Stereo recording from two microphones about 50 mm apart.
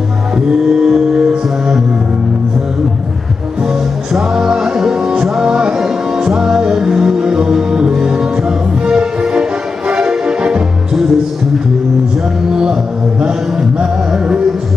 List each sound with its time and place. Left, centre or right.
0.5 s music: centre
3.6 s music: centre
12.4 s music: centre